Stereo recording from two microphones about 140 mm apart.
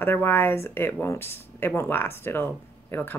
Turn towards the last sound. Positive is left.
turn(degrees=15)  # may be behind; listen again after turning